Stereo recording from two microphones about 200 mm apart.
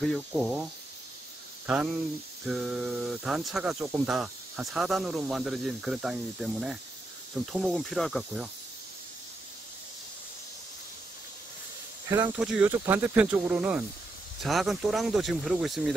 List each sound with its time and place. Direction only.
0.0 s speech: centre (ahead or behind)
1.7 s speech: 5° right (ahead or behind)
12.1 s speech: 5° right (ahead or behind)